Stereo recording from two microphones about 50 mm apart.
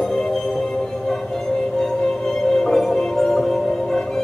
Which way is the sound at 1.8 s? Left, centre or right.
Centre.